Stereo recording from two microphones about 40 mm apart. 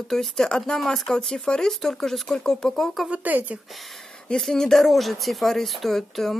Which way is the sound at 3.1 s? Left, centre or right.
Right.